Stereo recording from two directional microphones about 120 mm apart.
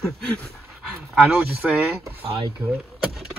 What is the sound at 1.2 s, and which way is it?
Speech, 10° right (ahead or behind).